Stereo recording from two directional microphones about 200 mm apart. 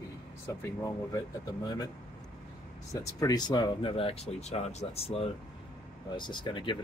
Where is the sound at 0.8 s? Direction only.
15° left (ahead or behind).